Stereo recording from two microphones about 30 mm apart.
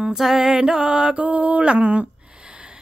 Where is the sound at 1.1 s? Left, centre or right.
Right.